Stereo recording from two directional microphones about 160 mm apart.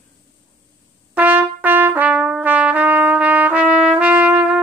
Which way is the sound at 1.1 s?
10° right (ahead or behind).